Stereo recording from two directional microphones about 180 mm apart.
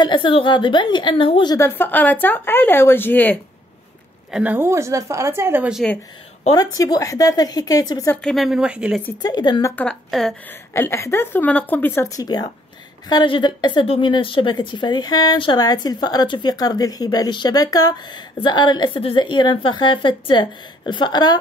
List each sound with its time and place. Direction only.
0.0 s a woman's voice: 25° left (ahead or behind)
1.6 s a woman's voice: 10° left (ahead or behind)
4.3 s a woman's voice: 10° right (ahead or behind)
6.5 s a woman's voice: 20° left (ahead or behind)
8.2 s speech: centre (ahead or behind)
9.2 s a woman's voice: 25° left (ahead or behind)
9.8 s speech: centre (ahead or behind)
10.7 s a woman's voice: 15° left (ahead or behind)